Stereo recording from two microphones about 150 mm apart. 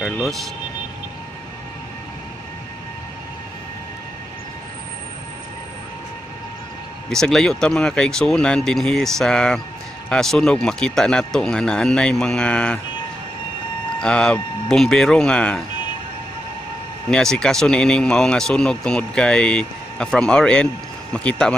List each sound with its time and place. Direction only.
0.0 s vehicle: centre (ahead or behind)
7.1 s speech: 5° left (ahead or behind)
13.9 s speech: 5° left (ahead or behind)
17.1 s speech: 5° left (ahead or behind)